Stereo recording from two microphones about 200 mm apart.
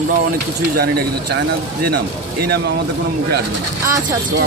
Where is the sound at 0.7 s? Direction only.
55° right (ahead or behind).